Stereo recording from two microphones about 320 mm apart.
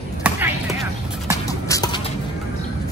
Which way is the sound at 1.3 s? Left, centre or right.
Centre.